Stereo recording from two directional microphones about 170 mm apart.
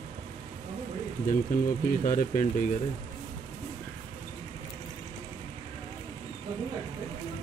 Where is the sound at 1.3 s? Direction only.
50° left (ahead or behind).